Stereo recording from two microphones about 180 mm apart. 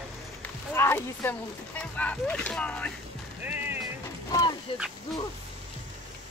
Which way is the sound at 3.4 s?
10° right (ahead or behind).